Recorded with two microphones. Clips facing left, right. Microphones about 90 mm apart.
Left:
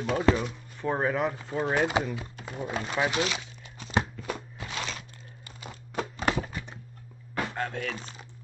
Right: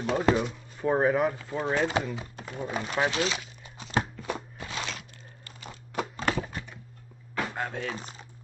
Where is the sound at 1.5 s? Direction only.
15° left (ahead or behind).